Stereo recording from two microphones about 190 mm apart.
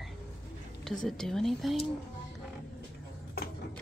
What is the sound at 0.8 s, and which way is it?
Speech, centre (ahead or behind).